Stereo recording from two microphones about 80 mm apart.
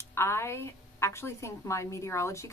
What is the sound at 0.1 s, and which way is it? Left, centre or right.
A woman's voice, left.